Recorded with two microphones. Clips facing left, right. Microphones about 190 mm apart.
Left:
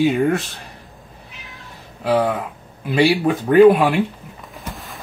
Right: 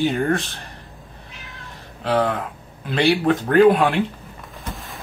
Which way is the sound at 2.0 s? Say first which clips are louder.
Left 2 dB; 10° left (ahead or behind).